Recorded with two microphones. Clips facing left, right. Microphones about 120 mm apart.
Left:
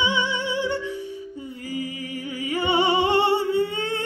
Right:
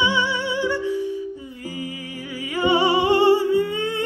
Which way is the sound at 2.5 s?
25° left (ahead or behind).